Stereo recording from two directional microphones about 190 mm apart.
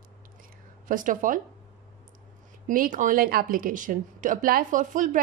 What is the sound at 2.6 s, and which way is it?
Speech, 45° right (ahead or behind).